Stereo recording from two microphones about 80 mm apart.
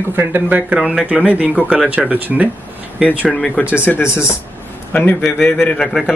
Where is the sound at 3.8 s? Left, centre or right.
Left.